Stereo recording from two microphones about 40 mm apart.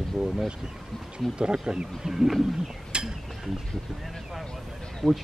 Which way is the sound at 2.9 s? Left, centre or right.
Right.